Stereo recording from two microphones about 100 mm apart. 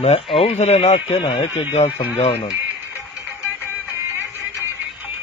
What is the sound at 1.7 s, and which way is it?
Speech, 90° left.